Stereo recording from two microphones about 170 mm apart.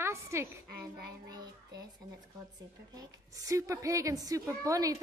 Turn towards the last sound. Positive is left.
turn(degrees=-20)  # may be behind; listen again after turning